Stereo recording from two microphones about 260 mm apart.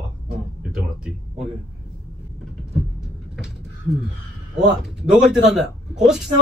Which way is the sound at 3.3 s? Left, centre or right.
Centre.